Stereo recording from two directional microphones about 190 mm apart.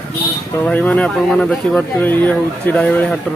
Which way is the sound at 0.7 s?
5° left (ahead or behind).